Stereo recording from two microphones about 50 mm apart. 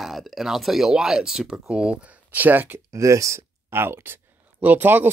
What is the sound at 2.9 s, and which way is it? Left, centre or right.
Speech, right.